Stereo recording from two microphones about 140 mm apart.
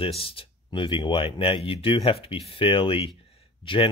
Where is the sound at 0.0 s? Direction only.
40° left (ahead or behind).